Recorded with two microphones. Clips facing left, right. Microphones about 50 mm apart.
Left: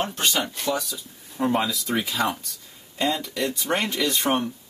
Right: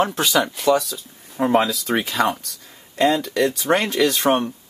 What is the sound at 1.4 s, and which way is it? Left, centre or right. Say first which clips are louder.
Speech: right 5 dB; right.